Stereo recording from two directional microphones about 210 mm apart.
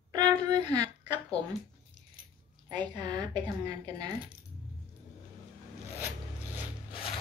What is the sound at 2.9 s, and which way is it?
Speech, 20° right (ahead or behind).